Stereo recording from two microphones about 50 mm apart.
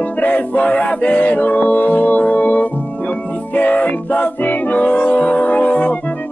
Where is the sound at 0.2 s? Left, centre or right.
Left.